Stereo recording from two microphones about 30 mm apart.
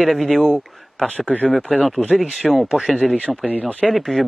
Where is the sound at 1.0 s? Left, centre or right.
Left.